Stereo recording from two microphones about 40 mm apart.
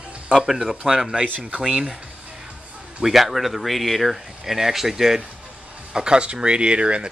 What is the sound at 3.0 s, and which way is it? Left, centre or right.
Speech, centre.